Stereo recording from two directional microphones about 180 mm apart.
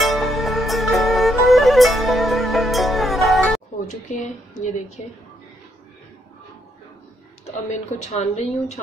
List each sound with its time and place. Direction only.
0.0 s music: centre (ahead or behind)
4.1 s a woman's voice: 45° left (ahead or behind)
7.6 s speech: 40° left (ahead or behind)